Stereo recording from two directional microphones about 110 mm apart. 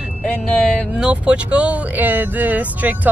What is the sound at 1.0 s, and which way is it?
Speech, 10° right (ahead or behind).